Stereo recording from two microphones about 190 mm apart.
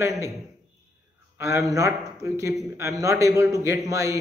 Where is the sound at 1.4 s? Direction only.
15° right (ahead or behind).